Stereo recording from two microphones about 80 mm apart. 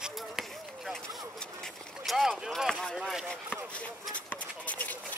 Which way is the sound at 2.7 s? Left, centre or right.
Centre.